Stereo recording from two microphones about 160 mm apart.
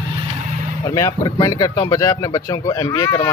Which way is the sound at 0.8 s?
20° left (ahead or behind).